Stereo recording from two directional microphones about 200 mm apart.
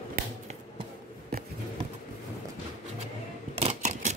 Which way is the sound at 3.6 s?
35° right (ahead or behind).